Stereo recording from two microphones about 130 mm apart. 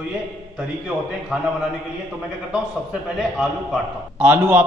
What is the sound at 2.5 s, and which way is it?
A man's voice, 5° right (ahead or behind).